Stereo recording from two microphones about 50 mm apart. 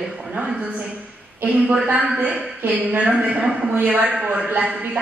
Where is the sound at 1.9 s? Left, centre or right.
Right.